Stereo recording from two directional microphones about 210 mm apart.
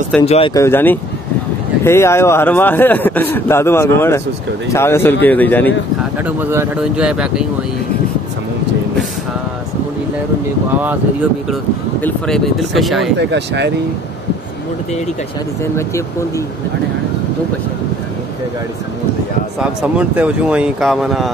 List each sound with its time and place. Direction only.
0.2 s speech: 30° left (ahead or behind)
0.6 s a man's voice: 10° left (ahead or behind)
6.2 s speech: 10° right (ahead or behind)
12.0 s speech: centre (ahead or behind)
13.2 s speech: 55° right (ahead or behind)
15.6 s a man's voice: 15° left (ahead or behind)
19.6 s speech: 5° right (ahead or behind)